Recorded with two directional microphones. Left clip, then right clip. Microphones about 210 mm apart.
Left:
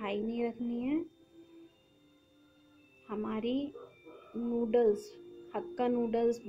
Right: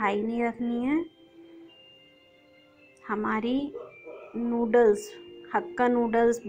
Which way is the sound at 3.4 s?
50° right (ahead or behind).